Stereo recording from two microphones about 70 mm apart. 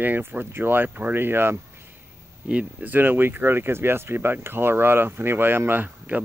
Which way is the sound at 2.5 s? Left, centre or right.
Centre.